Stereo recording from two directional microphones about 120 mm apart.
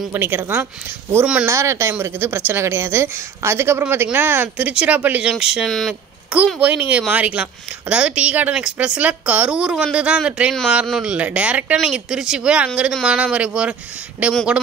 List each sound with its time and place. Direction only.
0.1 s a woman's voice: 15° right (ahead or behind)
1.5 s a woman's voice: 25° right (ahead or behind); by 5.9 s 5° left (ahead or behind)
6.3 s a woman's voice: 10° right (ahead or behind)